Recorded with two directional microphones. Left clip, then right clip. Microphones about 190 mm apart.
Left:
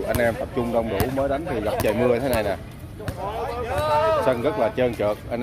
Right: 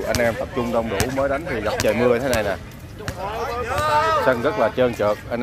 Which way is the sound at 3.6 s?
10° left (ahead or behind).